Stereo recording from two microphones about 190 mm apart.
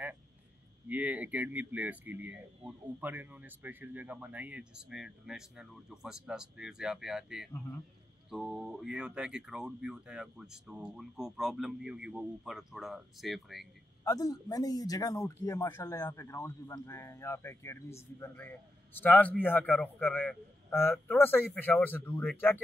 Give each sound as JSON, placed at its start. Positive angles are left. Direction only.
{"t": 0.8, "sound": "speech", "side_deg": -10}
{"t": 14.0, "sound": "a man's voice", "side_deg": 20}